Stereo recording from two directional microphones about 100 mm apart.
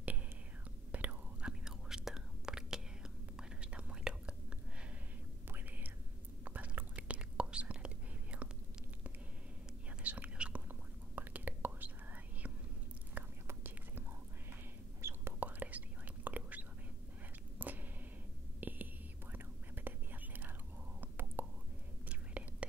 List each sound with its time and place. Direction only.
0.9 s whispering: 10° right (ahead or behind)
6.4 s whispering: 15° right (ahead or behind)
10.0 s whispering: 15° right (ahead or behind)
13.2 s whispering: 15° right (ahead or behind)
17.6 s a sound: 20° right (ahead or behind)
18.6 s whispering: 20° right (ahead or behind)